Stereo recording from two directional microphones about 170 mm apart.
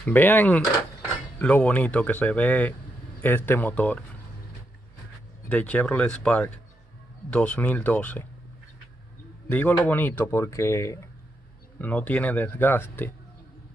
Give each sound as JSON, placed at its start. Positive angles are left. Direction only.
{"t": 0.0, "sound": "speech", "side_deg": 10}
{"t": 5.5, "sound": "speech", "side_deg": 10}
{"t": 9.5, "sound": "speech", "side_deg": 10}